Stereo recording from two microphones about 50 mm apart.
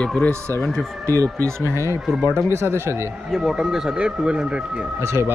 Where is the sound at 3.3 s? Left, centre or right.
Centre.